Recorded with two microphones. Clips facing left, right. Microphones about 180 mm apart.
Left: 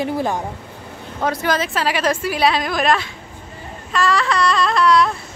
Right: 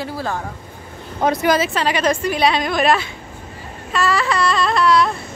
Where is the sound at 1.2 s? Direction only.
20° right (ahead or behind).